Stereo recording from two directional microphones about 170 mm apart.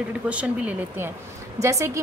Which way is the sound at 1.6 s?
20° right (ahead or behind).